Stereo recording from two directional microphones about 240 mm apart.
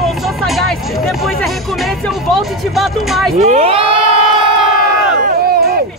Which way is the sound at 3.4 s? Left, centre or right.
Right.